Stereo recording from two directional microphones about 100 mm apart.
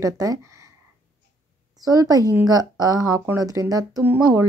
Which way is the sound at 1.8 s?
35° right (ahead or behind).